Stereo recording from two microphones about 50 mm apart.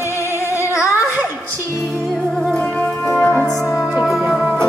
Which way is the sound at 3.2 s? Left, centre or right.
Left.